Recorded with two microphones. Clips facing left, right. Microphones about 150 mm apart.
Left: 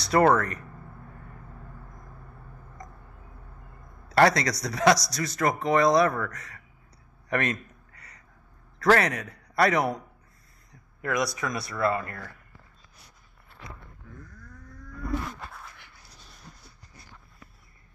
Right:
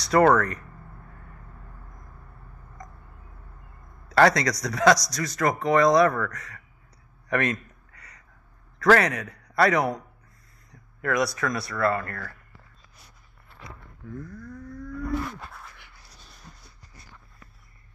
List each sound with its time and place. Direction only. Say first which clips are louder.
0.0 s a man's voice: right 2 dB; 25° left (ahead or behind)
4.2 s a man's voice: right 1 dB; 30° left (ahead or behind)
7.2 s a sound: right 2 dB; 25° left (ahead or behind)
8.7 s a man's voice: right 2 dB; 30° left (ahead or behind)
11.3 s speech: right 3 dB; 20° left (ahead or behind)